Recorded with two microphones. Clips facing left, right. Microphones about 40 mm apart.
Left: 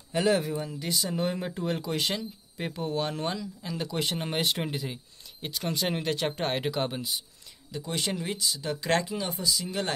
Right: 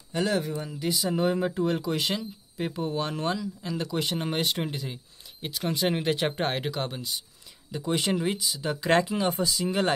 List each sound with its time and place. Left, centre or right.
0.1 s speech: centre
6.5 s speech: centre
7.7 s speech: centre
9.4 s speech: right